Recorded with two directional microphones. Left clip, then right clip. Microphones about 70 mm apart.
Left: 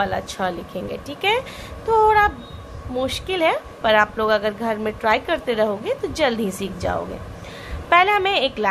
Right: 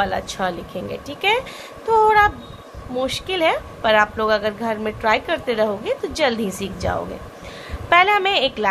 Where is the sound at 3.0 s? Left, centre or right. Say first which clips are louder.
Right 1 dB; left.